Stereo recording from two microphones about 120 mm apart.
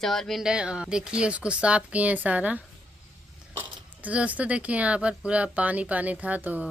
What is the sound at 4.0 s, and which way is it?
Speech, 10° right (ahead or behind).